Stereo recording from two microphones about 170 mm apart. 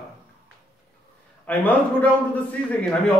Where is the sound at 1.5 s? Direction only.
10° left (ahead or behind).